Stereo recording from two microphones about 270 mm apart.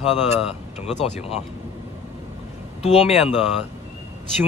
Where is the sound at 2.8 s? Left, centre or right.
Left.